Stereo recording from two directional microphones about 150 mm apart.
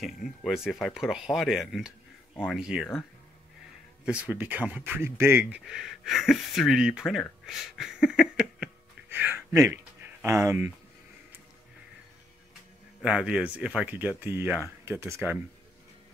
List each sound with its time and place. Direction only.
0.0 s speech: centre (ahead or behind)
9.1 s a sound: 15° right (ahead or behind)
9.7 s speech: 15° right (ahead or behind)
13.0 s speech: 5° right (ahead or behind)